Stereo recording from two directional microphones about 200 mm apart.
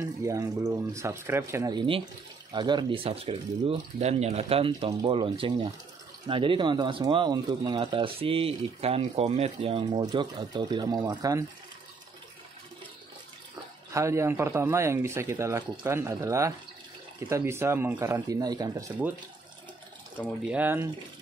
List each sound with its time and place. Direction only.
0.0 s speech: 15° right (ahead or behind)
13.9 s speech: 15° right (ahead or behind)
20.2 s speech: 5° right (ahead or behind)